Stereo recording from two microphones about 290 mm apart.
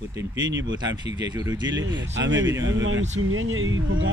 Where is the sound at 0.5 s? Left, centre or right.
Right.